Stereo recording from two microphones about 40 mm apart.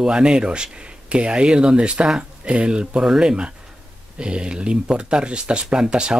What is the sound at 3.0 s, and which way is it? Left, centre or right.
Speech, centre.